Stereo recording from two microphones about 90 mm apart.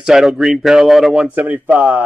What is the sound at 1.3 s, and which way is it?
Speech, 15° right (ahead or behind).